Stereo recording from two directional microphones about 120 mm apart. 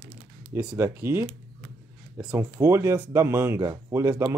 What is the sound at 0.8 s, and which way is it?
Speech, 20° right (ahead or behind).